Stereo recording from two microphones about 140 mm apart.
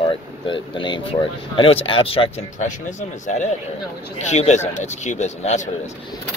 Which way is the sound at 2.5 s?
60° left (ahead or behind).